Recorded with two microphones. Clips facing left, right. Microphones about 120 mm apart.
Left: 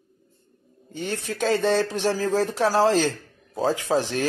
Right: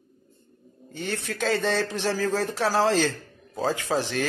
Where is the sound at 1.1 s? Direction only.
15° left (ahead or behind).